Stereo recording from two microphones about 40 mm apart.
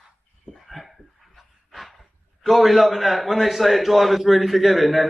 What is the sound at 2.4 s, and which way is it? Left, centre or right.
A man's voice, centre.